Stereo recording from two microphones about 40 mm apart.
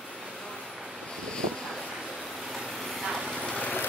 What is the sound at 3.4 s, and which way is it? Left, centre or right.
Vehicle, left.